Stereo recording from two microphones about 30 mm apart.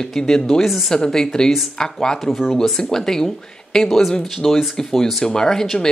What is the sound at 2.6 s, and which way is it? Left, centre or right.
Speech, centre.